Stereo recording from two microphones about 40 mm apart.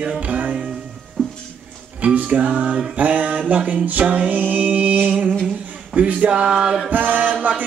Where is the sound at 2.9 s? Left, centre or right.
Right.